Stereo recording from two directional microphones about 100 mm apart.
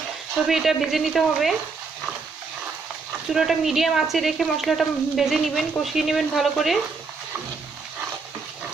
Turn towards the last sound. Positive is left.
turn(degrees=0)  # may be behind; listen again after turning